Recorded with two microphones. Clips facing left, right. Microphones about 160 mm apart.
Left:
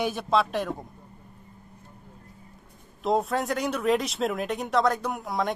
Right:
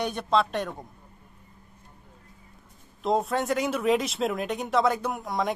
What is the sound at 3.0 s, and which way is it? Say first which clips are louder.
A woman's voice: even; centre (ahead or behind).